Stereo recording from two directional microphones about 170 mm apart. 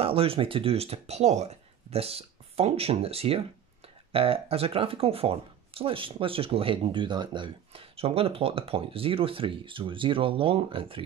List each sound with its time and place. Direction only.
0.0 s speech: 35° right (ahead or behind)